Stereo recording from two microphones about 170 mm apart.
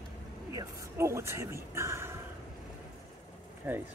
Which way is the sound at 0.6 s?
15° right (ahead or behind).